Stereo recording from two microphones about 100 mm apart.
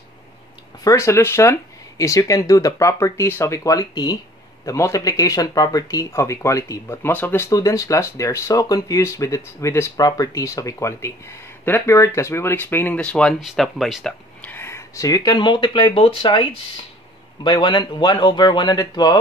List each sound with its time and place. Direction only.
0.8 s speech: 30° left (ahead or behind)
7.5 s speech: 35° left (ahead or behind); by 13.4 s 10° left (ahead or behind)
13.4 s speech: centre (ahead or behind)
14.4 s a sound: 20° left (ahead or behind); by 15.3 s 35° left (ahead or behind)
15.3 s speech: 50° left (ahead or behind)